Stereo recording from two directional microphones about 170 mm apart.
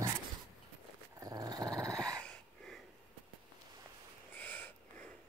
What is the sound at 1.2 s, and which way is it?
Dog, 20° right (ahead or behind).